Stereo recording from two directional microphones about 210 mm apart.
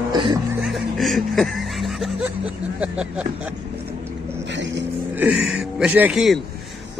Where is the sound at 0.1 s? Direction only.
20° right (ahead or behind).